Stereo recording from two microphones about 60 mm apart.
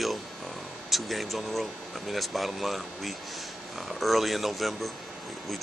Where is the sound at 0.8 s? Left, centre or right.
Centre.